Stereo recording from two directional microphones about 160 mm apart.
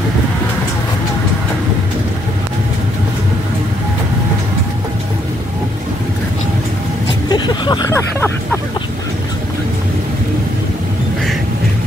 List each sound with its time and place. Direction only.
7.2 s vehicle: 30° left (ahead or behind)